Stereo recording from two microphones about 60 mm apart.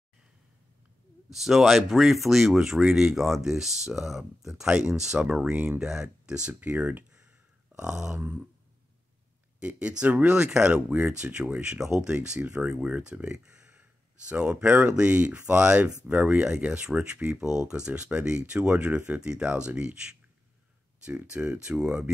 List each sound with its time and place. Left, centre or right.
1.3 s speech: centre
6.6 s speech: right
7.7 s speech: centre
9.6 s speech: centre
12.5 s speech: right
16.3 s speech: centre